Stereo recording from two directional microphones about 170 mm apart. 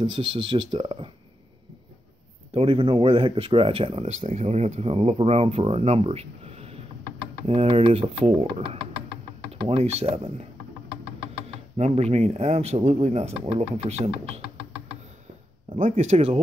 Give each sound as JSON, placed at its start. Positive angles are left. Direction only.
{"t": 0.0, "sound": "speech", "side_deg": -30}
{"t": 2.5, "sound": "speech", "side_deg": -35}
{"t": 9.7, "sound": "speech", "side_deg": -40}
{"t": 11.7, "sound": "speech", "side_deg": -40}
{"t": 15.8, "sound": "speech", "side_deg": -45}